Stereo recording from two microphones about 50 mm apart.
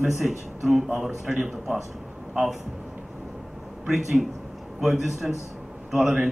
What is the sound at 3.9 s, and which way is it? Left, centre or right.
A man's voice, centre.